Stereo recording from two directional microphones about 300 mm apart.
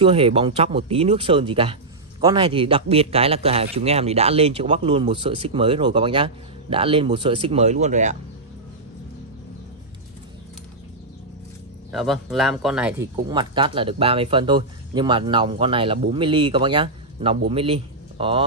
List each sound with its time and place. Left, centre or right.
0.0 s speech: centre
11.9 s speech: centre
13.3 s speech: centre